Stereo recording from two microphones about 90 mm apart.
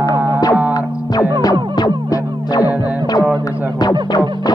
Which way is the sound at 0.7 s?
45° left (ahead or behind).